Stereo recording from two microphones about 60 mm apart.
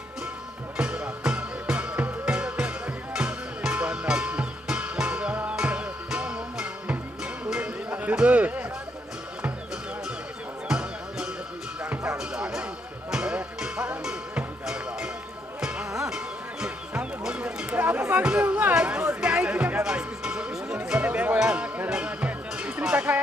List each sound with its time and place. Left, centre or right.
0.7 s music: centre
7.9 s a sound: right
10.7 s music: centre
17.2 s run: centre
17.7 s music: right